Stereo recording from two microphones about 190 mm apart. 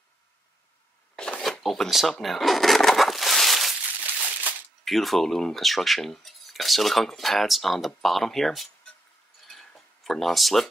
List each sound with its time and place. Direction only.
1.1 s speech: 5° left (ahead or behind)
9.5 s tick-tock: centre (ahead or behind)